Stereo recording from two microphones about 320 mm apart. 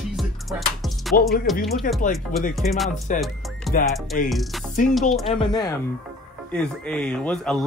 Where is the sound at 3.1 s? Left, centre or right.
Left.